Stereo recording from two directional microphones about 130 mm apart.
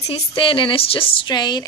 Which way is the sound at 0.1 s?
40° left (ahead or behind).